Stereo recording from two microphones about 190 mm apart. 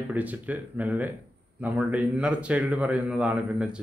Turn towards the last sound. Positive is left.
turn(degrees=-5)  # may be behind; listen again after turning